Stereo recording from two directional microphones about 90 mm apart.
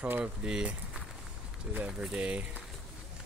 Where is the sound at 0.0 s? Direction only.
15° right (ahead or behind).